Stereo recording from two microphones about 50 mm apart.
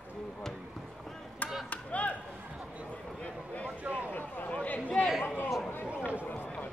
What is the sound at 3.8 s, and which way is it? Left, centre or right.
Speech, right.